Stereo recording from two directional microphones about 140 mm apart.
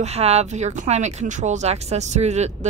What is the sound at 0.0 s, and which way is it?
Speech, 50° right (ahead or behind).